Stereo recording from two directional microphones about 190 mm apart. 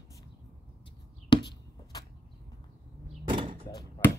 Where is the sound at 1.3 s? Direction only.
20° left (ahead or behind).